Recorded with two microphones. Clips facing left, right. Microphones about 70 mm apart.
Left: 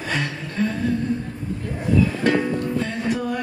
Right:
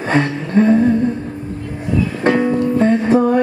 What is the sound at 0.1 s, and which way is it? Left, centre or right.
Music, right.